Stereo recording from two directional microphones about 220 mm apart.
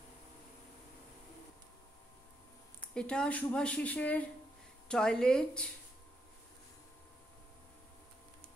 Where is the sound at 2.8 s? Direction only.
5° left (ahead or behind).